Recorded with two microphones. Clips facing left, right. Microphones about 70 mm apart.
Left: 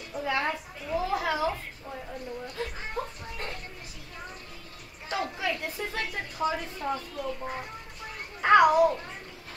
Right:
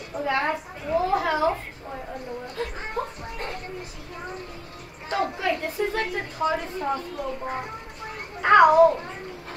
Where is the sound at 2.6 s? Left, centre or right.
Right.